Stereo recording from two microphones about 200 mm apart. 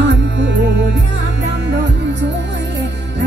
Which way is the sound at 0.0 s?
60° right (ahead or behind).